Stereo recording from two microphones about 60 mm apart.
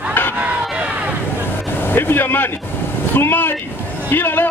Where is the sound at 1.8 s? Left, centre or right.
Left.